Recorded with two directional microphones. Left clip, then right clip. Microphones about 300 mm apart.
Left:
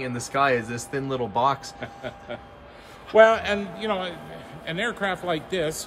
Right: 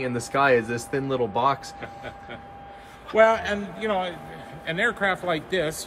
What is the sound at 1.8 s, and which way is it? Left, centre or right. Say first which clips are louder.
Speech: left 1 dB; left.